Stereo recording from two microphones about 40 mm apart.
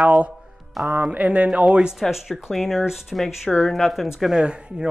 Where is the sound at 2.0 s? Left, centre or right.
Centre.